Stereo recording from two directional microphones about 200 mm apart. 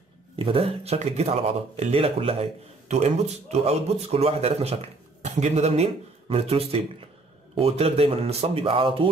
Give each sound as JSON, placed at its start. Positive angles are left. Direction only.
{"t": 0.4, "sound": "speech", "side_deg": -30}
{"t": 3.5, "sound": "speech", "side_deg": -30}